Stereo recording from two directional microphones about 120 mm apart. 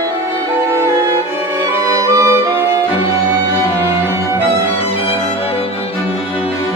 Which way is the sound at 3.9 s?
20° right (ahead or behind).